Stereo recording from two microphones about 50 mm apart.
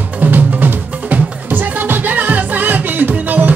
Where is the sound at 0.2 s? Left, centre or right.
Right.